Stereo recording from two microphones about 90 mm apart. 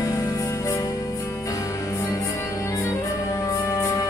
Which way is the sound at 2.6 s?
35° left (ahead or behind).